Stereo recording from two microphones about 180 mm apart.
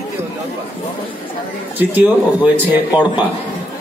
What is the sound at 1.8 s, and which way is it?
Speech, 10° right (ahead or behind).